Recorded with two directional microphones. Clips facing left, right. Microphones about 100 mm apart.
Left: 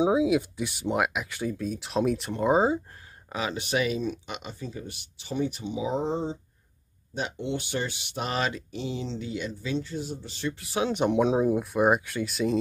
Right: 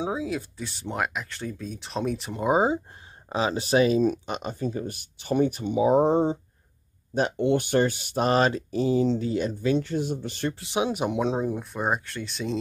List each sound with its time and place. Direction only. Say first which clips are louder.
0.0 s speech: left 6 dB; 15° left (ahead or behind); by 2.8 s 15° right (ahead or behind)
3.3 s speech: right 5 dB; 30° right (ahead or behind); by 10.5 s 55° right (ahead or behind)
10.5 s speech: even; 25° right (ahead or behind)
10.9 s speech: left 2 dB; 5° right (ahead or behind)